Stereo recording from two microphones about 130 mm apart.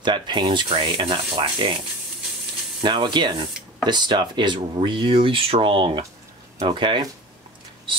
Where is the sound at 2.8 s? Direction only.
35° right (ahead or behind).